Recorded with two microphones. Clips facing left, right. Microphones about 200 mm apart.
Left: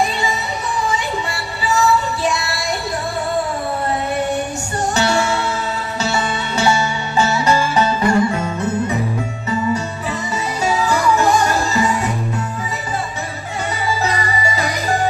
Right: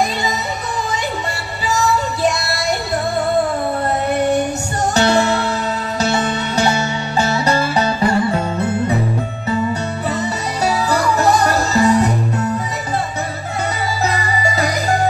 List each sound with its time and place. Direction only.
2.2 s music: 40° right (ahead or behind)
4.9 s music: 35° right (ahead or behind)
10.6 s music: 40° right (ahead or behind)
14.0 s music: 40° right (ahead or behind)